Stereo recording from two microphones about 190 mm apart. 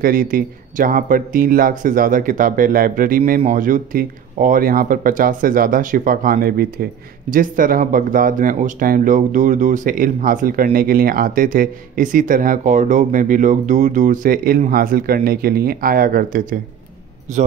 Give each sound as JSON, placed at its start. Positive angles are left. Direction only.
{"t": 0.0, "sound": "speech", "side_deg": -50}